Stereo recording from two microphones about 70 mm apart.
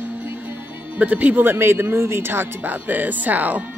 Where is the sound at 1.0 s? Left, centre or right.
Right.